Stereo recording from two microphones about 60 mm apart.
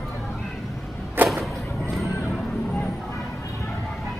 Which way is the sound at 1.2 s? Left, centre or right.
Right.